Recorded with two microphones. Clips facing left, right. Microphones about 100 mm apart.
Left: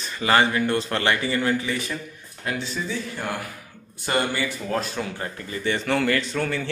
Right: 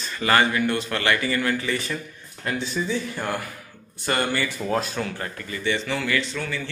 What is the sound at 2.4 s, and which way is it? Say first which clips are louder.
Speech: right 2 dB; centre (ahead or behind).